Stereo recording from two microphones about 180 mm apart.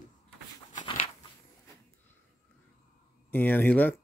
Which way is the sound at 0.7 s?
30° left (ahead or behind).